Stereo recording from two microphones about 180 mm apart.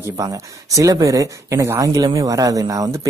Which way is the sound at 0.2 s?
20° right (ahead or behind).